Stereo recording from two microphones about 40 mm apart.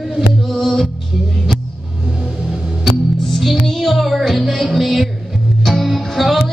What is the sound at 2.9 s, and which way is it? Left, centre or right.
Music, centre.